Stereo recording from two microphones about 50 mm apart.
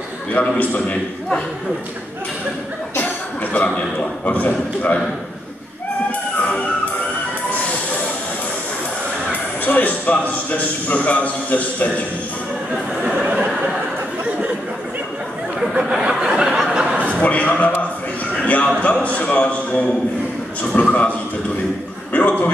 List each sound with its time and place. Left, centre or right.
0.3 s a man's voice: left
3.5 s a man's voice: left
6.3 s music: left
9.7 s a man's voice: left
13.0 s a sound: right
15.8 s a sound: centre
17.1 s a man's voice: left
22.1 s a man's voice: left